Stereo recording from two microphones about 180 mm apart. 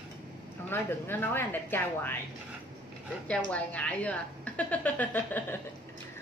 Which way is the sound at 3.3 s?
5° left (ahead or behind).